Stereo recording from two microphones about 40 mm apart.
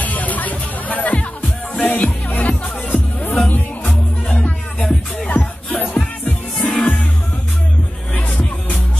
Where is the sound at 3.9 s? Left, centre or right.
Centre.